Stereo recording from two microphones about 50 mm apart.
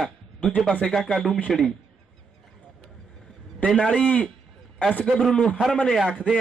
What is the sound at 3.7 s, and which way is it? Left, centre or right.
Speech, centre.